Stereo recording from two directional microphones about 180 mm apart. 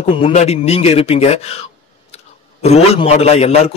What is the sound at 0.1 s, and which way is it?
A man's voice, 35° left (ahead or behind).